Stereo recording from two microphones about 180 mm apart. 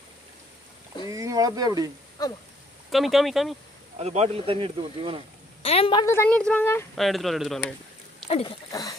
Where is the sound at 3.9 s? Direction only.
35° right (ahead or behind).